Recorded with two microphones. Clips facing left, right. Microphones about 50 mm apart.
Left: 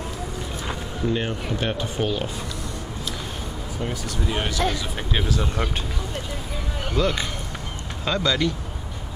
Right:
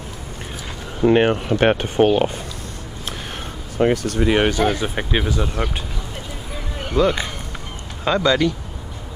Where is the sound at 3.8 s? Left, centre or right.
Right.